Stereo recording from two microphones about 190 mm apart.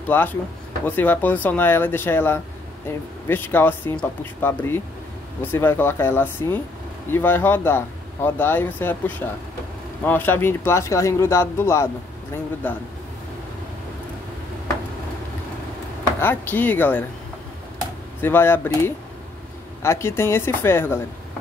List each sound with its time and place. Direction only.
0.1 s speech: 10° left (ahead or behind)
16.2 s speech: 10° left (ahead or behind)
18.2 s speech: 10° left (ahead or behind)